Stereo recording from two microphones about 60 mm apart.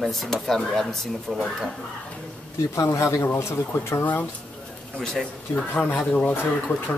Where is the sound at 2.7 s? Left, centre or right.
Left.